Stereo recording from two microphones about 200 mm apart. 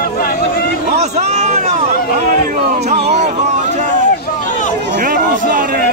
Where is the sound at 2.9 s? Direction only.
30° right (ahead or behind).